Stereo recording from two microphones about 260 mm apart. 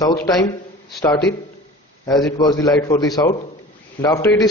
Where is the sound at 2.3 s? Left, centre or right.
Centre.